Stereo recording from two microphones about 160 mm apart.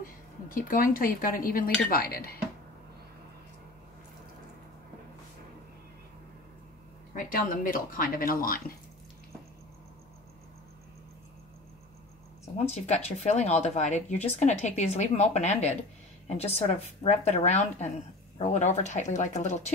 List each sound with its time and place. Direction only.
0.6 s speech: 60° left (ahead or behind)
7.2 s speech: 60° left (ahead or behind)
12.5 s speech: 40° left (ahead or behind)